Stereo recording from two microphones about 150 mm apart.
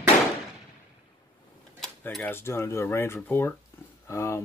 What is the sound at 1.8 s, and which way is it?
Speech, 5° left (ahead or behind).